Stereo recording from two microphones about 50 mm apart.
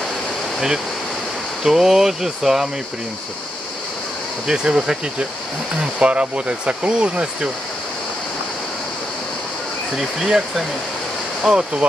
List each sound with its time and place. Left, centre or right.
1.6 s speech: centre
4.5 s speech: centre
9.9 s speech: centre